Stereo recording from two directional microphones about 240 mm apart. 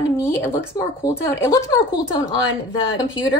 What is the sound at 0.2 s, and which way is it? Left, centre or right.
A woman's voice, centre.